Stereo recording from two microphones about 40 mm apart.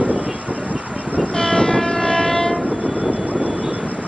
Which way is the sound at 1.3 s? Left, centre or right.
Left.